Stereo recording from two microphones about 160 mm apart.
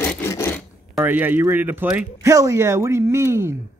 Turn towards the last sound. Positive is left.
turn(degrees=-15)  # may be behind; listen again after turning